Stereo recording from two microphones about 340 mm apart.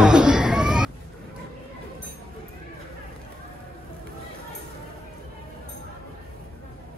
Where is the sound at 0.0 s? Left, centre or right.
Centre.